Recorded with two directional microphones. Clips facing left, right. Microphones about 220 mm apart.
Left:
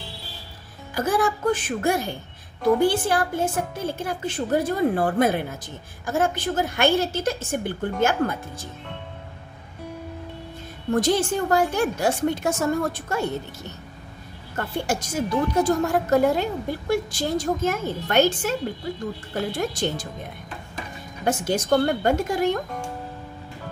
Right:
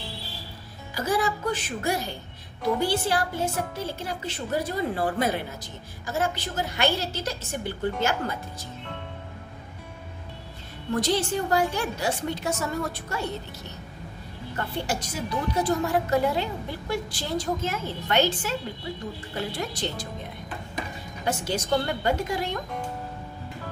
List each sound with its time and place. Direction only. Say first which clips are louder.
0.9 s a woman's voice: left 3 dB; 50° left (ahead or behind)
10.9 s a woman's voice: left 4 dB; 50° left (ahead or behind)
14.6 s a woman's voice: left 4 dB; 50° left (ahead or behind)
21.3 s a woman's voice: left 5 dB; 50° left (ahead or behind)